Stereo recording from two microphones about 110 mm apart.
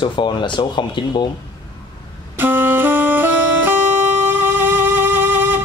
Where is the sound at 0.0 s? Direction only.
45° left (ahead or behind).